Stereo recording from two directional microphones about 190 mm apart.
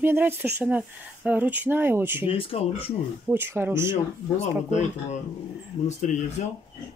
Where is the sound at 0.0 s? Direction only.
10° right (ahead or behind).